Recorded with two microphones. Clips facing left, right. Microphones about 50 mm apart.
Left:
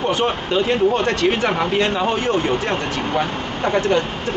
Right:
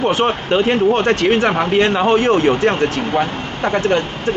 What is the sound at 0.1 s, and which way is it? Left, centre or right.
Speech, right.